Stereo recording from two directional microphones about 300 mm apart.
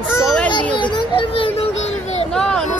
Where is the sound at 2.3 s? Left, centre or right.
Centre.